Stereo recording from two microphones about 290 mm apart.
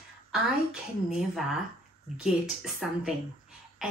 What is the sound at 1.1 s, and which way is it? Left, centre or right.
Speech, centre.